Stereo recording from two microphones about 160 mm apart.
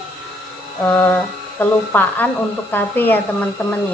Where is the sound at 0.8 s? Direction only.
10° left (ahead or behind).